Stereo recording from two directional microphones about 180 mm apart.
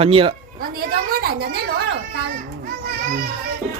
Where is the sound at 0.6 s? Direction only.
55° right (ahead or behind).